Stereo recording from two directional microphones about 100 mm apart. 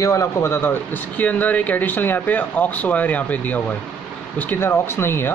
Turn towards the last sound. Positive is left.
turn(degrees=25)  # may be behind; listen again after turning